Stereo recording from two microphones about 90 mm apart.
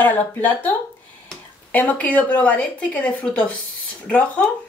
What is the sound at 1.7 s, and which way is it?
A woman's voice, 15° left (ahead or behind).